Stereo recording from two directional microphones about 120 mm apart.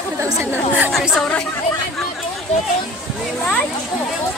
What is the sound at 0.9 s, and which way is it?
Speech, centre (ahead or behind).